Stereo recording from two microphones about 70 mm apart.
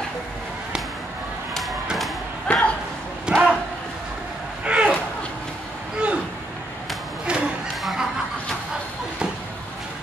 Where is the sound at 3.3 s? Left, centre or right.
Centre.